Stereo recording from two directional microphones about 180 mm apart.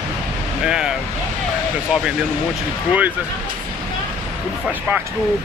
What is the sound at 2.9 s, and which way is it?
Speech, 10° right (ahead or behind).